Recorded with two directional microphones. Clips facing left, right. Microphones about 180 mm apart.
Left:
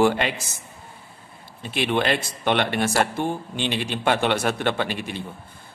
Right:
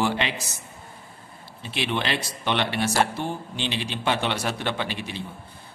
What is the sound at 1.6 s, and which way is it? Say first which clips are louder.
A man's voice: left 5 dB; 50° left (ahead or behind).